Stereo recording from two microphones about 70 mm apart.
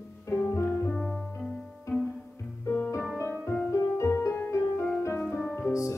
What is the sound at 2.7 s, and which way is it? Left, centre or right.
Music, left.